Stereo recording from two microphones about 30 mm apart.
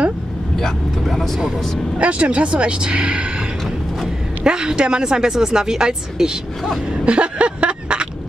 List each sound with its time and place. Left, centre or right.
1.0 s speech: centre
2.0 s speech: right
4.5 s speech: right
6.9 s cough: right